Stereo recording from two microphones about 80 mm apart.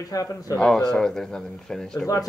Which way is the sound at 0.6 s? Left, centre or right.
Centre.